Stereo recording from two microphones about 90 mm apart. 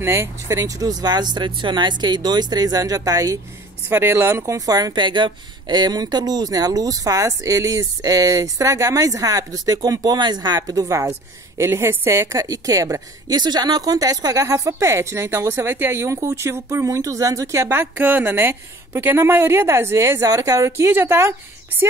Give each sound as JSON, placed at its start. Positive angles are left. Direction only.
{"t": 0.0, "sound": "speech", "side_deg": -30}
{"t": 3.9, "sound": "a woman's voice", "side_deg": -25}